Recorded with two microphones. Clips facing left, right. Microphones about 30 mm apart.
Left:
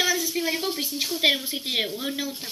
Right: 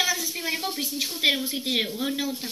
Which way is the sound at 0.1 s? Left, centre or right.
Centre.